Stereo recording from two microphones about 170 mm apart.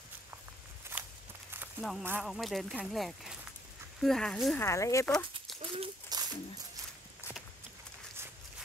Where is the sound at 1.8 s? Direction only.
Centre (ahead or behind).